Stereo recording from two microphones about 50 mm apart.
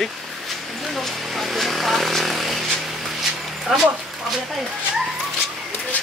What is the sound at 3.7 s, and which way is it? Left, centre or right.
Speech, centre.